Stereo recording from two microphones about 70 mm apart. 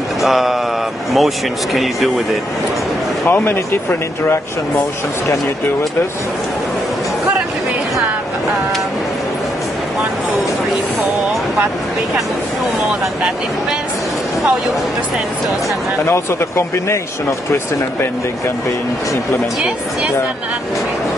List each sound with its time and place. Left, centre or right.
0.2 s speech: centre
3.3 s speech: left
16.1 s speech: left